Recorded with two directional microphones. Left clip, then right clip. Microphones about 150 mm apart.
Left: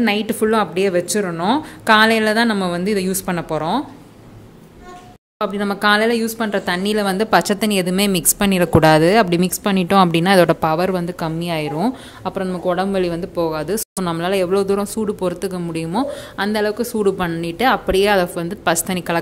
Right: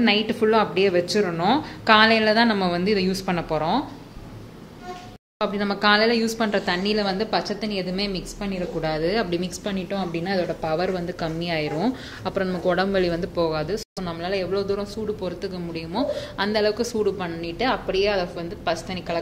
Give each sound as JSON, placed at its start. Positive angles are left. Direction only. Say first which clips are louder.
{"t": 0.0, "sound": "a woman's voice", "louder": "left 2 dB", "side_deg": 25}
{"t": 5.4, "sound": "a woman's voice", "louder": "left 4 dB", "side_deg": 20}
{"t": 8.2, "sound": "a woman's voice", "louder": "left 12 dB", "side_deg": 80}
{"t": 10.7, "sound": "a woman's voice", "louder": "left 6 dB", "side_deg": 35}
{"t": 13.7, "sound": "speech", "louder": "left 7 dB", "side_deg": 45}
{"t": 17.0, "sound": "speech", "louder": "left 6 dB", "side_deg": 45}